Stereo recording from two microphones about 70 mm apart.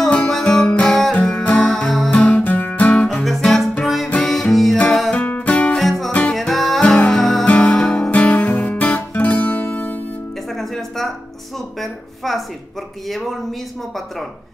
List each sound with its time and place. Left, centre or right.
0.3 s music: centre
2.0 s music: centre
2.4 s guitar: left
3.3 s music: centre
5.1 s music: left
5.8 s music: centre
6.8 s music: centre
7.4 s guitar: centre
10.5 s music: centre
11.8 s a sound: centre